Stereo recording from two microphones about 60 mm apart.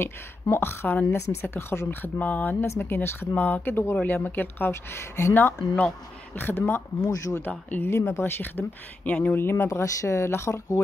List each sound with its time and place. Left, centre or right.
0.0 s speech: left
1.0 s speech: left
2.6 s speech: left
5.3 s speech: left